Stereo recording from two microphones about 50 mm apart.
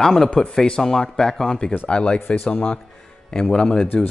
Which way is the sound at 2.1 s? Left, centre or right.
Left.